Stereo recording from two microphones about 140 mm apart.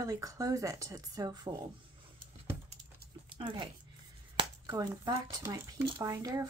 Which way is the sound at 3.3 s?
35° right (ahead or behind).